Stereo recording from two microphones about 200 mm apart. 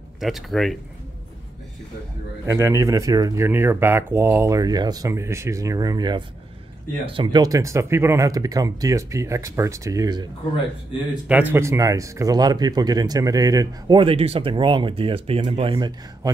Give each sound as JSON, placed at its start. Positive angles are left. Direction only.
{"t": 0.2, "sound": "speech", "side_deg": 0}
{"t": 2.4, "sound": "speech", "side_deg": -15}
{"t": 11.2, "sound": "speech", "side_deg": -10}